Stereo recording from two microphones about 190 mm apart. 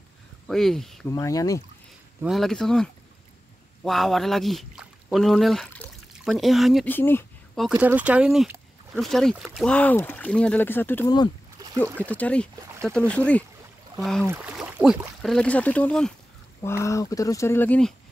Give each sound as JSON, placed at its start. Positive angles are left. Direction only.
{"t": 0.5, "sound": "speech", "side_deg": 0}
{"t": 1.0, "sound": "speech", "side_deg": 15}
{"t": 2.2, "sound": "speech", "side_deg": 0}
{"t": 6.9, "sound": "speech", "side_deg": 10}
{"t": 7.5, "sound": "speech", "side_deg": -5}
{"t": 12.1, "sound": "speech", "side_deg": 5}
{"t": 14.2, "sound": "speech", "side_deg": -10}